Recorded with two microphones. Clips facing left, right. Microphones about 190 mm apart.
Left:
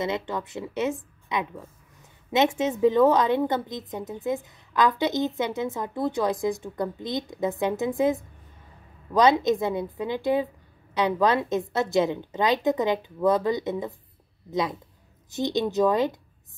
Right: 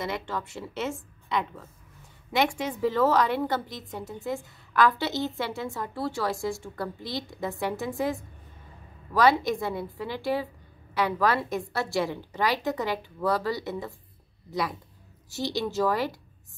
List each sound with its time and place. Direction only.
0.0 s a woman's voice: 20° left (ahead or behind)